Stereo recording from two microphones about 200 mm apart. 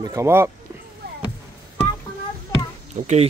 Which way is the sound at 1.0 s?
55° right (ahead or behind).